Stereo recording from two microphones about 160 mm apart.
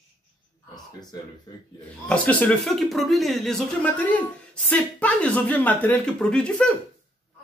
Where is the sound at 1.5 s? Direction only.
25° left (ahead or behind).